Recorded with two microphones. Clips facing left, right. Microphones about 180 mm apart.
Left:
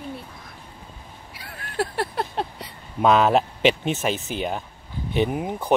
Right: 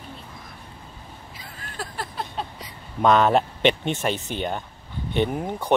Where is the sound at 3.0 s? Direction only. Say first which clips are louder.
Even; 5° left (ahead or behind).